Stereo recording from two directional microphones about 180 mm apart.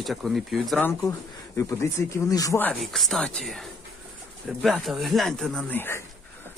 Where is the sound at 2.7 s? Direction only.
Centre (ahead or behind).